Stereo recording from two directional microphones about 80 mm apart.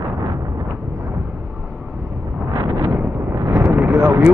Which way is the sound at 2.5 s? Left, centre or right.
Right.